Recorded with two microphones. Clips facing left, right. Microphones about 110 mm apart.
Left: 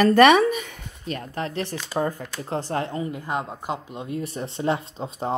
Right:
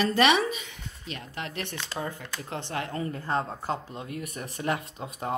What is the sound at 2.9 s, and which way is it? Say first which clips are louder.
Speech: left 2 dB; 15° left (ahead or behind).